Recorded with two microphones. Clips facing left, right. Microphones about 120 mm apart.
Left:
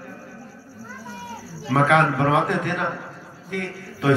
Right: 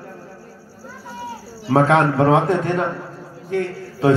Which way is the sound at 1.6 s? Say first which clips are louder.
Right 3 dB; 30° right (ahead or behind).